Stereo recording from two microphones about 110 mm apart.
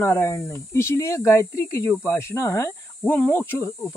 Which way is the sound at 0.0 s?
25° left (ahead or behind).